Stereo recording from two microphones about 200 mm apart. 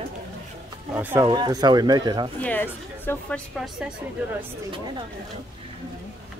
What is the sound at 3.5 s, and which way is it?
Speech, 5° right (ahead or behind).